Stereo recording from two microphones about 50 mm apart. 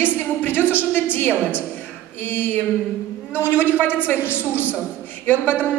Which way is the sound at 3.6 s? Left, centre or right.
Left.